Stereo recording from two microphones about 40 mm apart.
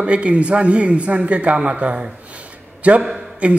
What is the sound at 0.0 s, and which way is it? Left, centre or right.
A man's voice, right.